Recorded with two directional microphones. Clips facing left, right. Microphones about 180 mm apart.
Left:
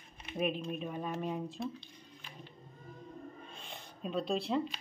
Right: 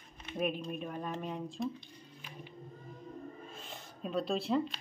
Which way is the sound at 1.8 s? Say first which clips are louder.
Right 1 dB; 10° right (ahead or behind).